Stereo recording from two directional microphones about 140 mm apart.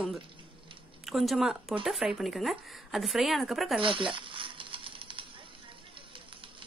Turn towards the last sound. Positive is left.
turn(degrees=-40)  # may be behind; listen again after turning